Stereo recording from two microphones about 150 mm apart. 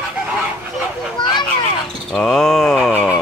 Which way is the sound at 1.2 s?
30° left (ahead or behind).